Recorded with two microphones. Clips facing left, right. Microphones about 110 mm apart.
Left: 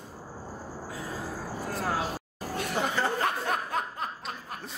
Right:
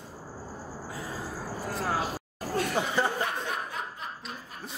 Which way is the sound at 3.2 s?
50° left (ahead or behind).